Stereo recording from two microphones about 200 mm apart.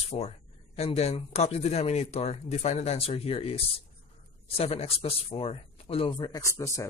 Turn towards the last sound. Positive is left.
turn(degrees=15)  # may be behind; listen again after turning